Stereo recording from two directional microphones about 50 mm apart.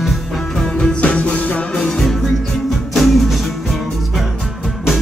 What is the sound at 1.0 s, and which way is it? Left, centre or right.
Music, left.